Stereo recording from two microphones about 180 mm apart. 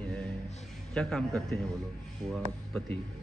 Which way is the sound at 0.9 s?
5° left (ahead or behind).